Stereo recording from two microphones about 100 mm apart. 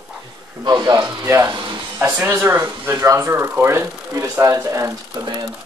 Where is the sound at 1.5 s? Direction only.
50° right (ahead or behind).